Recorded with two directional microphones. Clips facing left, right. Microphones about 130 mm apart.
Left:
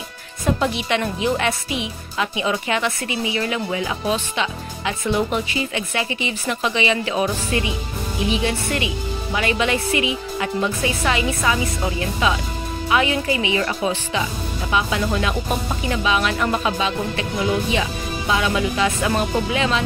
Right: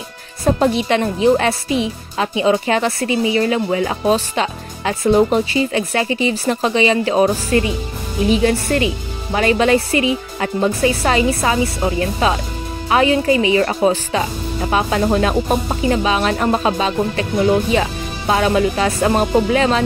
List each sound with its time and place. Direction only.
0.5 s speech: 35° right (ahead or behind)